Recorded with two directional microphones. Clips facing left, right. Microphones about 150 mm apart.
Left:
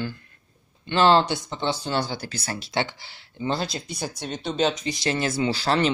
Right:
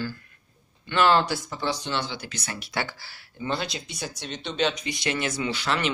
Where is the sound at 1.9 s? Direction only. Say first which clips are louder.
Left 4 dB; 40° left (ahead or behind).